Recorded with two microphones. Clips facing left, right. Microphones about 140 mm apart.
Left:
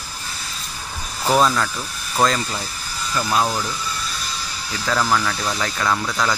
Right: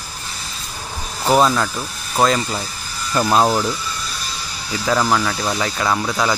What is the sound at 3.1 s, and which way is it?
Speech, 40° right (ahead or behind).